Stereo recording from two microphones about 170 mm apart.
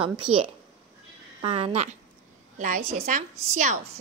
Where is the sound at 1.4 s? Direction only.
35° right (ahead or behind).